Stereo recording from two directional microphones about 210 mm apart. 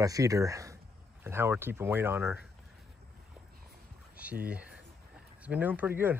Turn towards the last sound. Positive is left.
turn(degrees=-10)  # may be behind; listen again after turning